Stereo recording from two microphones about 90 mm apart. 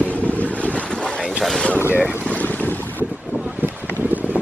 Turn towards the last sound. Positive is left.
turn(degrees=-20)  # may be behind; listen again after turning